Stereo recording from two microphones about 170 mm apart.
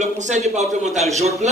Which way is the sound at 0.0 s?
45° right (ahead or behind).